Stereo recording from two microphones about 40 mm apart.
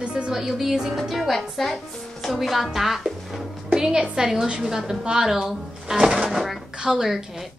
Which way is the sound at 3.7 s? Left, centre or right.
Centre.